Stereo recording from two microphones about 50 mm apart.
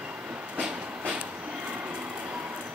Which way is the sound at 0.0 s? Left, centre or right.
Right.